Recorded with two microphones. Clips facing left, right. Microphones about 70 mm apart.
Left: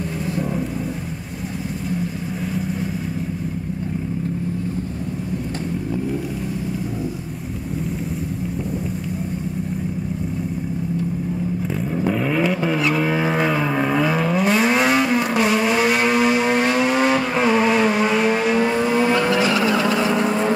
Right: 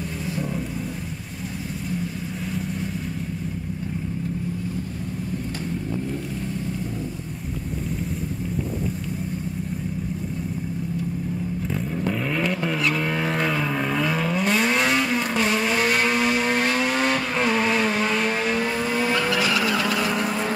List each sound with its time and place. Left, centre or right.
12.0 s vehicle: centre